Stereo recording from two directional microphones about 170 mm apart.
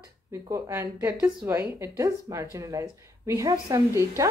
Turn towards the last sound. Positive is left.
turn(degrees=-15)  # may be behind; listen again after turning